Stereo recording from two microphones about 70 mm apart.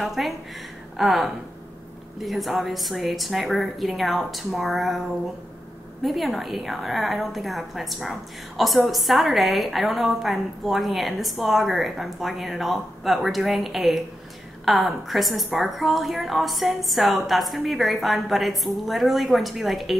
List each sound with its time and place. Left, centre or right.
0.0 s a woman's voice: centre
6.0 s a woman's voice: centre